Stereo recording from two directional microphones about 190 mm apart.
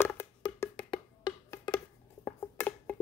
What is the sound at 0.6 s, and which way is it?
Wood block, 20° left (ahead or behind).